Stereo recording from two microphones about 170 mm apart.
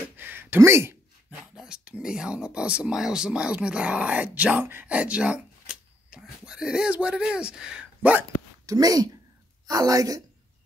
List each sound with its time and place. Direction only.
0.2 s a sound: 10° right (ahead or behind)
1.6 s speech: 5° right (ahead or behind)
8.6 s a woman's voice: 20° right (ahead or behind)